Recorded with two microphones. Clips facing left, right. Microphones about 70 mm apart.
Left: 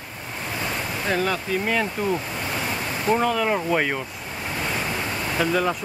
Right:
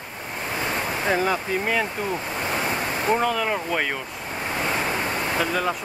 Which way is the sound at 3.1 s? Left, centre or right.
Centre.